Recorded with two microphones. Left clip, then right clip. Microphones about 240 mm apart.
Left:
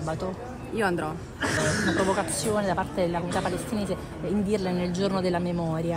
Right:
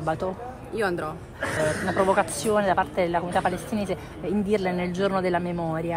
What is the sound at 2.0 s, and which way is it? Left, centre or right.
A woman's voice, right.